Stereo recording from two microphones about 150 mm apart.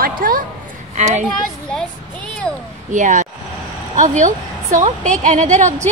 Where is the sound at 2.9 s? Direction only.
55° right (ahead or behind).